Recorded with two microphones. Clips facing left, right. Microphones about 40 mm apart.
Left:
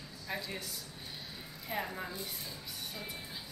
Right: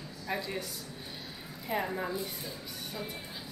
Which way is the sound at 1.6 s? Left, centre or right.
Centre.